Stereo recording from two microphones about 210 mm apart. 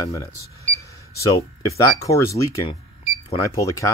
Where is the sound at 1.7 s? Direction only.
15° left (ahead or behind).